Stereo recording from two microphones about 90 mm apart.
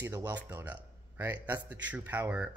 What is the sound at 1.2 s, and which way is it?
Speech, 20° right (ahead or behind).